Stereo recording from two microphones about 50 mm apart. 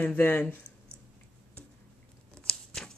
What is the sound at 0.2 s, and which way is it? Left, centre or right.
Speech, left.